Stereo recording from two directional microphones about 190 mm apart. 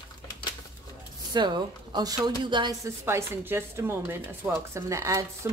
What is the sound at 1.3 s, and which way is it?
A woman's voice, 25° right (ahead or behind).